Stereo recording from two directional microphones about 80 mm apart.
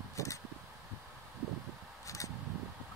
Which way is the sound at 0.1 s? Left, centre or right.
Left.